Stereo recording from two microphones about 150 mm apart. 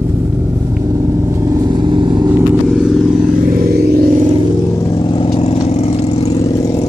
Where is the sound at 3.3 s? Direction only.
70° right (ahead or behind).